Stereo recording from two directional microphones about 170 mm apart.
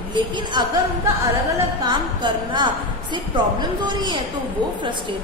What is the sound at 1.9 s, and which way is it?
Speech, 25° right (ahead or behind).